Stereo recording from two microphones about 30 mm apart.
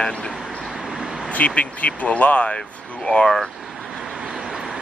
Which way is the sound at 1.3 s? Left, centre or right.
Left.